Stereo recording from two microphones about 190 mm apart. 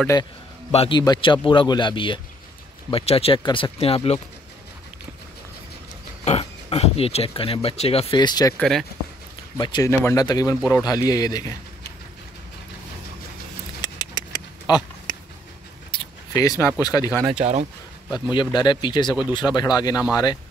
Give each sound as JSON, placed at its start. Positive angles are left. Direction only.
{"t": 0.0, "sound": "a man's voice", "side_deg": 15}
{"t": 0.7, "sound": "speech", "side_deg": 30}
{"t": 6.2, "sound": "speech", "side_deg": 35}
{"t": 8.5, "sound": "speech", "side_deg": 5}
{"t": 9.6, "sound": "speech", "side_deg": 20}
{"t": 13.7, "sound": "a sound", "side_deg": 20}
{"t": 16.8, "sound": "speech", "side_deg": 20}
{"t": 17.3, "sound": "speech", "side_deg": -35}
{"t": 18.3, "sound": "speech", "side_deg": 25}